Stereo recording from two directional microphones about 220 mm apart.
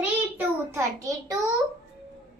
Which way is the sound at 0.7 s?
15° right (ahead or behind).